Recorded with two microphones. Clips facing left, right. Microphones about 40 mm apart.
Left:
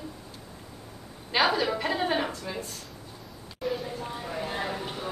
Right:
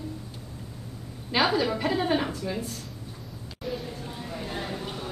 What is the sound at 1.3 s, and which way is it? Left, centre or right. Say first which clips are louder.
A woman's voice: even; centre.